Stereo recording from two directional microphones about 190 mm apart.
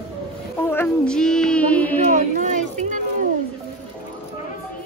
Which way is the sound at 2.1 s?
40° right (ahead or behind).